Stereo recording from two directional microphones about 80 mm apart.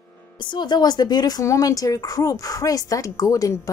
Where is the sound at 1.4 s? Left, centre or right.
Left.